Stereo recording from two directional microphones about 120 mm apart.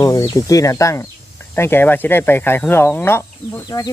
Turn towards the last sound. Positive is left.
turn(degrees=15)  # may be behind; listen again after turning